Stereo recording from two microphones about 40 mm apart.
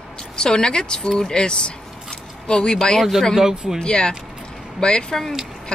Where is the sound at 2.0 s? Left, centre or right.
Centre.